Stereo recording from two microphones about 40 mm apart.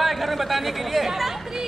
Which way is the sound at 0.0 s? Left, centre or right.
Centre.